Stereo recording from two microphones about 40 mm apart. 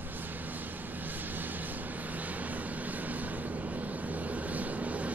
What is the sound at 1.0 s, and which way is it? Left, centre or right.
Vehicle, right.